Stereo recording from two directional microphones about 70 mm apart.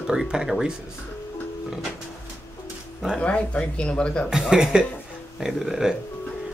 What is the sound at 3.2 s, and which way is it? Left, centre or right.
Speech, centre.